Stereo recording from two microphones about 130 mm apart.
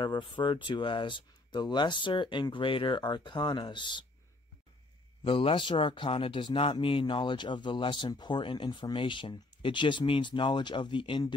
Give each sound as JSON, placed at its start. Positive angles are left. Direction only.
{"t": 0.0, "sound": "speech", "side_deg": 40}
{"t": 5.2, "sound": "speech", "side_deg": 45}